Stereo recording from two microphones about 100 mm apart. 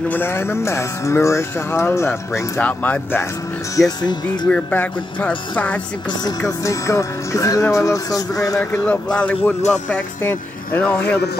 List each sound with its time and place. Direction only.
0.1 s speech: 20° left (ahead or behind)
2.6 s speech: 15° left (ahead or behind)
4.0 s speech: 45° left (ahead or behind)
4.5 s speech: 15° left (ahead or behind)
6.6 s music: 30° left (ahead or behind)
8.5 s speech: 15° left (ahead or behind)